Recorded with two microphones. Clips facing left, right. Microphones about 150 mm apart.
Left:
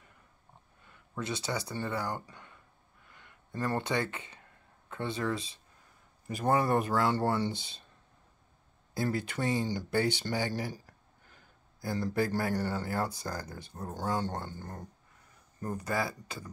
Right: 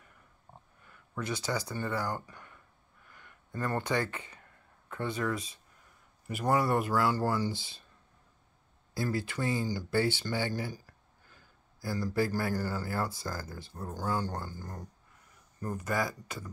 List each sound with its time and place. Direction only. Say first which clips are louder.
0.8 s speech: even; 25° left (ahead or behind)
2.2 s a sound: right 1 dB; 20° left (ahead or behind)
4.8 s speech: even; 25° left (ahead or behind)
8.9 s speech: left 1 dB; 20° left (ahead or behind)
11.8 s speech: even; 20° left (ahead or behind)
15.8 s speech: right 1 dB; 30° left (ahead or behind)